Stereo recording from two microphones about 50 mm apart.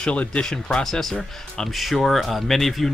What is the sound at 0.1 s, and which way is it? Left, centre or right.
Speech, left.